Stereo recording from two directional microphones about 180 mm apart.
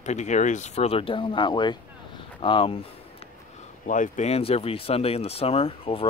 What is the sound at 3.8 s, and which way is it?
Speech, 45° left (ahead or behind).